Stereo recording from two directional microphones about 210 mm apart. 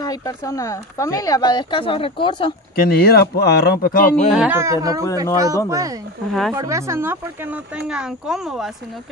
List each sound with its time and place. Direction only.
0.0 s speech: 15° left (ahead or behind)
2.7 s speech: 45° left (ahead or behind)
4.3 s speech: 5° right (ahead or behind)